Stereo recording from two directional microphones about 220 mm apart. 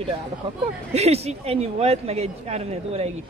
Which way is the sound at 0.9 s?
30° right (ahead or behind).